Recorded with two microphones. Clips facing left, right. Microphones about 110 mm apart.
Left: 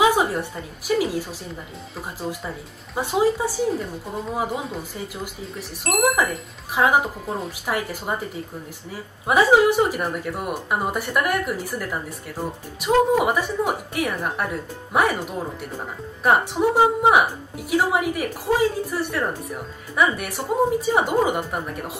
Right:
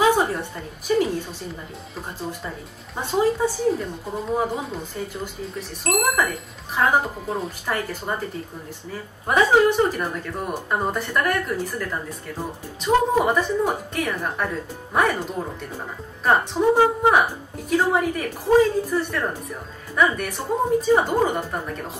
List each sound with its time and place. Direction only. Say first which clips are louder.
0.0 s a sound: even; 10° left (ahead or behind)
0.8 s a woman's voice: right 1 dB; 5° left (ahead or behind)
9.3 s a woman's voice: left 1 dB; 10° left (ahead or behind)
16.3 s a woman's voice: even; 15° left (ahead or behind)